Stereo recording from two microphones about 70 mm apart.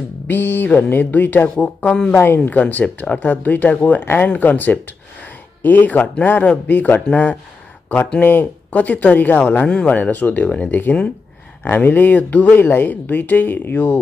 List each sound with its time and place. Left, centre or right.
0.3 s speech: left
2.1 s speech: left